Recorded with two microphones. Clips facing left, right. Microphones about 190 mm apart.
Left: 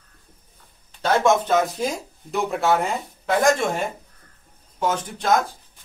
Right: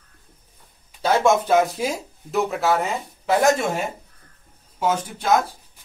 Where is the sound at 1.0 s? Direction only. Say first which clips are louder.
Right 1 dB; 10° right (ahead or behind).